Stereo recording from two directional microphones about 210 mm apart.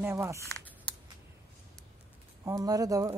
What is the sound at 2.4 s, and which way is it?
Speech, 15° right (ahead or behind).